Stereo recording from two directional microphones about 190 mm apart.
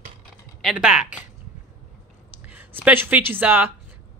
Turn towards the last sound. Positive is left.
turn(degrees=-10)  # may be behind; listen again after turning